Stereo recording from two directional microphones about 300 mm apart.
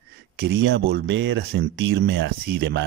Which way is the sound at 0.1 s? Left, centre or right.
Right.